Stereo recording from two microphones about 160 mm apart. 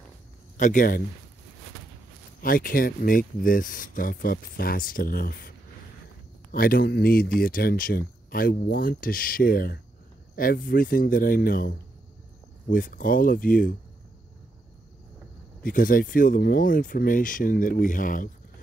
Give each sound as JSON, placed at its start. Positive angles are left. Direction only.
{"t": 0.6, "sound": "speech", "side_deg": 55}
{"t": 2.4, "sound": "speech", "side_deg": 60}
{"t": 6.5, "sound": "speech", "side_deg": 65}
{"t": 15.6, "sound": "speech", "side_deg": 60}